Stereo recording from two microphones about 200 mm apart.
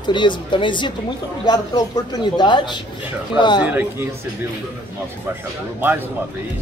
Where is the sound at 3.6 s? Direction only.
10° right (ahead or behind).